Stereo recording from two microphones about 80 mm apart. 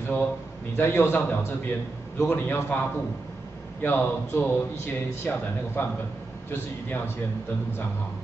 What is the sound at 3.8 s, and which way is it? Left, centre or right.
A man's voice, left.